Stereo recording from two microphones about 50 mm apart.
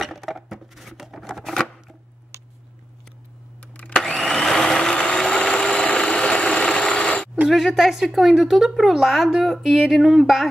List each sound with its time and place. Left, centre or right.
0.0 s patter: centre
1.6 s chopping: centre
3.6 s a sound: left
4.0 s vacuum cleaner: centre
4.5 s vehicle: centre
7.4 s speech: centre